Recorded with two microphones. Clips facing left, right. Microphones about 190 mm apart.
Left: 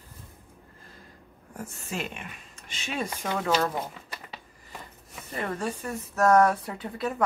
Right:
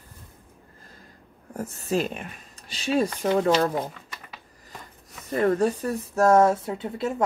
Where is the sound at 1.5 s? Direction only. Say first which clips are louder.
Right 10 dB; 40° right (ahead or behind).